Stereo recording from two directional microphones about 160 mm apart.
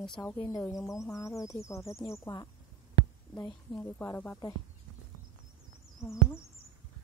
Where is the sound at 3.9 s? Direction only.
15° left (ahead or behind).